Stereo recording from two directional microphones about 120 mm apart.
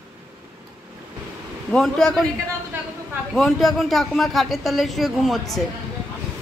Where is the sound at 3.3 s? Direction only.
Centre (ahead or behind).